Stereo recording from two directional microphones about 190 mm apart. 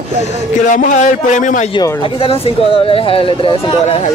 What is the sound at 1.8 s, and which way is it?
A man's voice, 30° left (ahead or behind).